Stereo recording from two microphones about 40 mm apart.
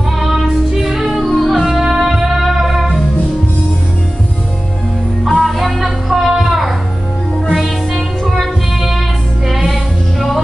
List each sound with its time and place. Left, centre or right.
0.2 s music: centre
5.4 s a sound: centre
7.5 s music: centre